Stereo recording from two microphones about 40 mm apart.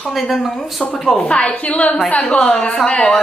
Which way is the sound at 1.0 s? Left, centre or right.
Centre.